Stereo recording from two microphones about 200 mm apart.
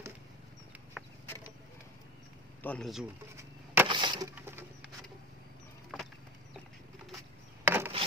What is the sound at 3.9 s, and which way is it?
Wood, 25° right (ahead or behind).